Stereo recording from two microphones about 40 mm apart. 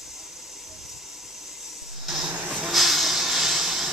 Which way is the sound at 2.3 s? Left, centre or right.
Right.